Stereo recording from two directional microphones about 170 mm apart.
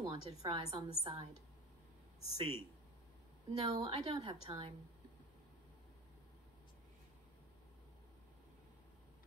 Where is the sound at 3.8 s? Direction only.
30° right (ahead or behind).